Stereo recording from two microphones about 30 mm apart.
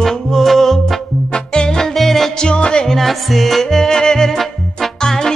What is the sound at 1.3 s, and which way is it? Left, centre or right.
Music, left.